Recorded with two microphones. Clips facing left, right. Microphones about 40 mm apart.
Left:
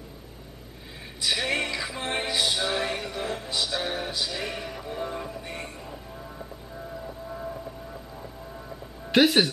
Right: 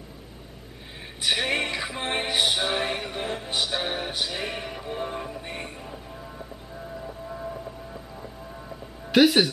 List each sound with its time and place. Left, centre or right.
1.2 s music: right
7.0 s music: centre
9.1 s speech: centre